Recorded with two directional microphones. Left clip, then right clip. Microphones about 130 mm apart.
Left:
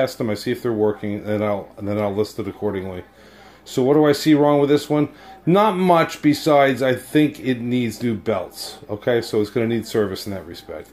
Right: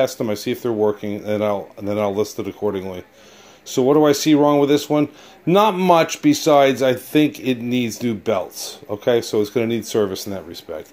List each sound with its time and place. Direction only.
0.2 s speech: 35° right (ahead or behind)